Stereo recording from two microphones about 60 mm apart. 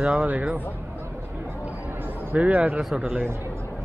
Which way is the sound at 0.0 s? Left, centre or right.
Centre.